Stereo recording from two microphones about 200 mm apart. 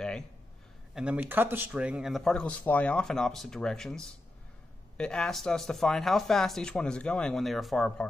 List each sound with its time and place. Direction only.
0.9 s speech: 5° right (ahead or behind)